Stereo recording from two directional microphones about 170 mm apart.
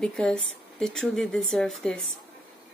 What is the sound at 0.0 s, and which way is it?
Speech, 5° left (ahead or behind).